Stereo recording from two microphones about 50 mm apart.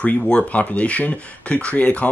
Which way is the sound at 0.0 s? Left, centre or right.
Left.